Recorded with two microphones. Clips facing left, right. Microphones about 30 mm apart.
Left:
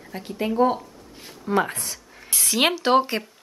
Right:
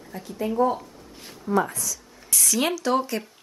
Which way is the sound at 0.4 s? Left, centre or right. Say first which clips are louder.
Left 2 dB; left.